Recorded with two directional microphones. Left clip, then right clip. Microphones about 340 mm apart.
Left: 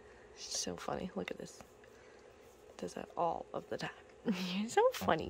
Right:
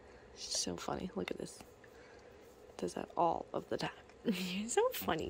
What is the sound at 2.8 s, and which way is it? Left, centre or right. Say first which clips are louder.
Speech: right 3 dB; centre.